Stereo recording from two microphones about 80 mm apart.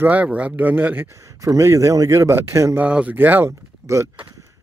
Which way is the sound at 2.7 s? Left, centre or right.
Centre.